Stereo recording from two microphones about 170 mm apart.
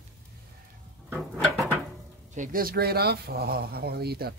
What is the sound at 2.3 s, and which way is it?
Speech, 50° right (ahead or behind).